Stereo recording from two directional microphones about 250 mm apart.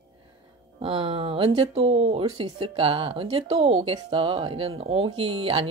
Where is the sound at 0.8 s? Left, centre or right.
Right.